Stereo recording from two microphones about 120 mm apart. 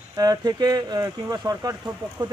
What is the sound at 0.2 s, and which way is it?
Speech, 35° right (ahead or behind).